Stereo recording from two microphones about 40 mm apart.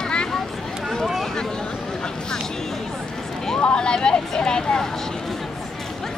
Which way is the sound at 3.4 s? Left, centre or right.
Left.